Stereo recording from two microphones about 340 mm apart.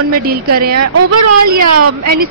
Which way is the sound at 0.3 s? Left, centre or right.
Right.